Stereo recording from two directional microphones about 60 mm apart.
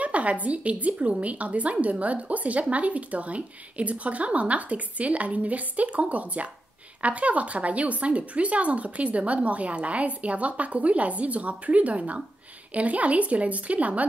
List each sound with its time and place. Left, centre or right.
0.0 s a woman's voice: right